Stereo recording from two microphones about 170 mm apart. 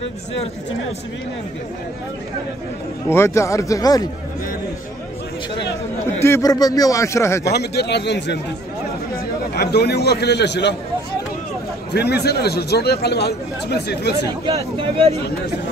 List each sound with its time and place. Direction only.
3.1 s a man's voice: 15° left (ahead or behind)
6.2 s a man's voice: 20° left (ahead or behind)
7.5 s a man's voice: 75° left (ahead or behind)
9.1 s a man's voice: 70° left (ahead or behind); by 10.8 s 90° left
11.9 s a man's voice: 75° left (ahead or behind)
14.4 s speech: 35° right (ahead or behind)